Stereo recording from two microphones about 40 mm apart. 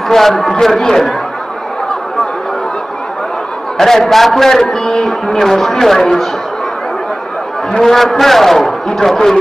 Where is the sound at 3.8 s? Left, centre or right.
Centre.